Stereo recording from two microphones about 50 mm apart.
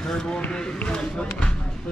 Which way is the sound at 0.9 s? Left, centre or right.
Centre.